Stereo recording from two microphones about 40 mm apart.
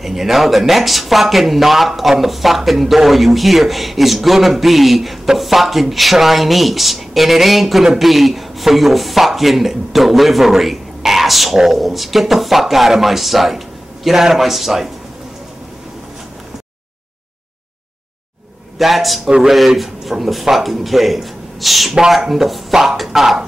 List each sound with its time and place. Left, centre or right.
0.0 s speech: centre
18.8 s speech: centre